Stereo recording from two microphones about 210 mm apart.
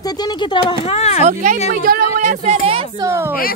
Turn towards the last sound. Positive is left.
turn(degrees=-15)  # may be behind; listen again after turning